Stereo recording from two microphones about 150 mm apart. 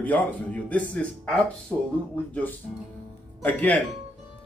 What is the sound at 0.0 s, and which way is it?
Speech, 10° left (ahead or behind).